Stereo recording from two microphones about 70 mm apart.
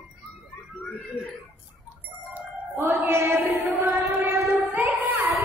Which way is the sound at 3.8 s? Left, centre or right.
Right.